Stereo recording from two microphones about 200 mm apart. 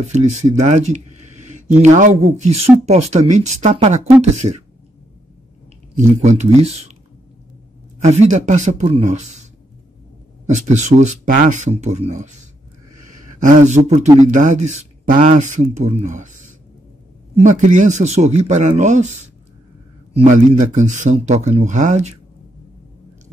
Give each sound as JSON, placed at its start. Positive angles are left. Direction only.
{"t": 0.0, "sound": "speech", "side_deg": -35}
{"t": 6.2, "sound": "speech", "side_deg": -35}
{"t": 8.0, "sound": "speech", "side_deg": -35}
{"t": 13.4, "sound": "speech", "side_deg": -40}
{"t": 17.4, "sound": "speech", "side_deg": -40}